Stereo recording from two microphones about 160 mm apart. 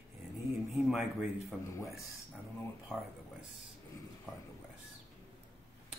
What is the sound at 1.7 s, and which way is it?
Speech, 20° left (ahead or behind).